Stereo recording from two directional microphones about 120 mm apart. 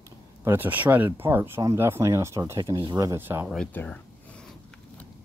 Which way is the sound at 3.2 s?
15° right (ahead or behind).